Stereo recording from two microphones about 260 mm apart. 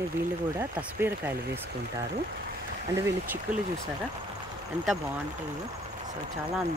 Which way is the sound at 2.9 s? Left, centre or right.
Centre.